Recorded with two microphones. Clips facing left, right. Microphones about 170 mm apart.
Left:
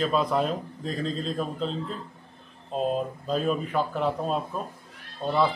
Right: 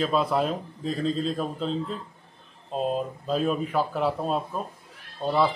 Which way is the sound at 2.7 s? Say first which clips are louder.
Even; centre (ahead or behind).